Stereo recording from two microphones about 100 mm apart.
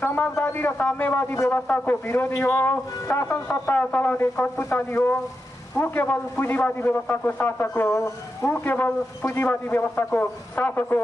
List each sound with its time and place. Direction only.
0.0 s a man's voice: 15° left (ahead or behind)